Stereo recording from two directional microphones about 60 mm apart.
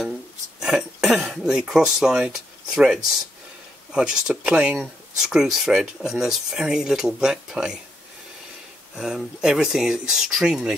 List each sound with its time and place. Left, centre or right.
0.6 s cough: centre
1.4 s speech: centre
8.9 s speech: centre